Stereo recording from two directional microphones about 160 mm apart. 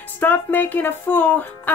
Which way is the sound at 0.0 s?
10° left (ahead or behind).